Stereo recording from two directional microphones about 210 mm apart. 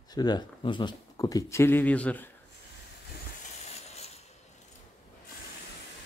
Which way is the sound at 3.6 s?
30° left (ahead or behind).